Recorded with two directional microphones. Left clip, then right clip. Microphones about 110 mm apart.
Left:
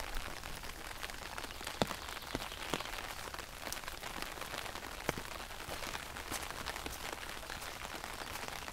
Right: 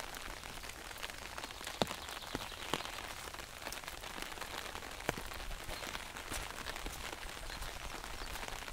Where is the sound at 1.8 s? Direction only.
5° right (ahead or behind).